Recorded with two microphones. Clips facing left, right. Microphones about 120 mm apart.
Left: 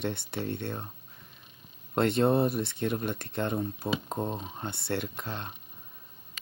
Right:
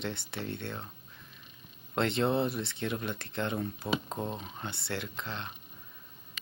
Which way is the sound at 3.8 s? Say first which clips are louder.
Even; 35° left (ahead or behind).